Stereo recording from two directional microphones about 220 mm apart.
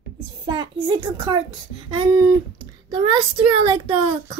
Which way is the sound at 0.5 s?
20° right (ahead or behind).